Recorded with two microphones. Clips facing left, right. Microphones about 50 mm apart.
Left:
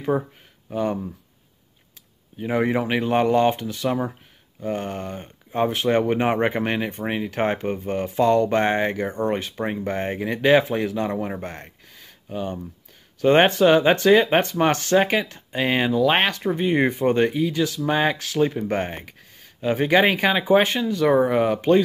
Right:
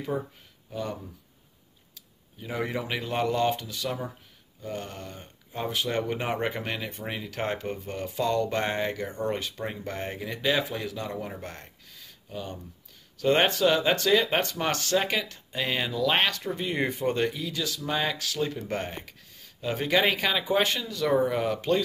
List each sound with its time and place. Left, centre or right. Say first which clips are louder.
0.1 s speech: left 7 dB; left
2.3 s speech: left 9 dB; left